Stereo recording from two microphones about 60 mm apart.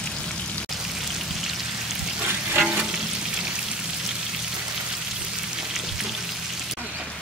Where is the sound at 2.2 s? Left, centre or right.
Right.